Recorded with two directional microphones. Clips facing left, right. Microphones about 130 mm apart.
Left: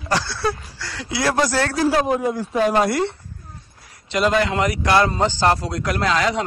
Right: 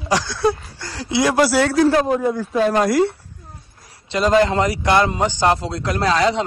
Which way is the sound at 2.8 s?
Centre (ahead or behind).